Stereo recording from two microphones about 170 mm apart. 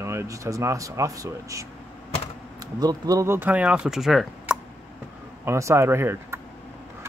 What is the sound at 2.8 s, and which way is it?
Speech, 20° right (ahead or behind).